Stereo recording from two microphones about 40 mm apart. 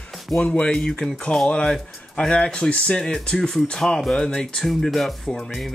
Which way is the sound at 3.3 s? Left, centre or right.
Centre.